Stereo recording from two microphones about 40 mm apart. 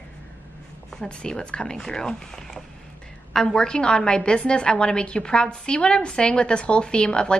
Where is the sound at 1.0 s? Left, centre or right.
Left.